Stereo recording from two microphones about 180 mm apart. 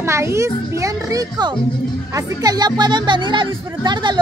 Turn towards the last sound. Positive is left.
turn(degrees=-25)  # may be behind; listen again after turning